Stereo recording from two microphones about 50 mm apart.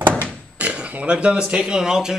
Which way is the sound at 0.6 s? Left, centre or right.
Right.